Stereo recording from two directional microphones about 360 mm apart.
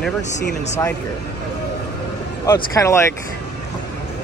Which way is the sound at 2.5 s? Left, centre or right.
Centre.